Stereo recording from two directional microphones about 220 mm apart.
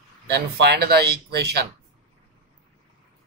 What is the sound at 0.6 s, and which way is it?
Speech, 45° right (ahead or behind).